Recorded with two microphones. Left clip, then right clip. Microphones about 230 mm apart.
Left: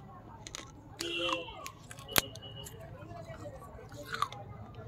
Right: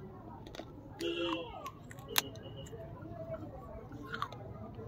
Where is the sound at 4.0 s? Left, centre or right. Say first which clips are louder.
Left 6 dB; left.